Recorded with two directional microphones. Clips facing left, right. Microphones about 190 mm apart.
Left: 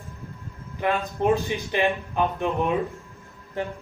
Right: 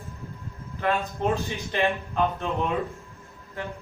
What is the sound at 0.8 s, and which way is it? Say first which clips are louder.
Speech: left 3 dB; 15° left (ahead or behind).